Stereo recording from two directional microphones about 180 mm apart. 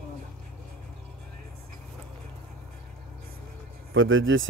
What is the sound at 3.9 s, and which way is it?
Speech, 90° right.